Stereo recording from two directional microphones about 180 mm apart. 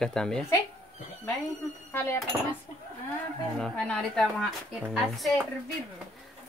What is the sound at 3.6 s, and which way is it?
Speech, 5° left (ahead or behind).